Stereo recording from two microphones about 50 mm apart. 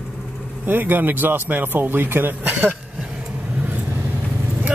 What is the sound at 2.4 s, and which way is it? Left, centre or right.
Speech, right.